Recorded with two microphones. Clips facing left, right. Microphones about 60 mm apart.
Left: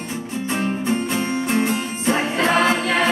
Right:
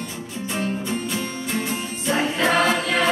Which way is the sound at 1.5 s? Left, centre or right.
Left.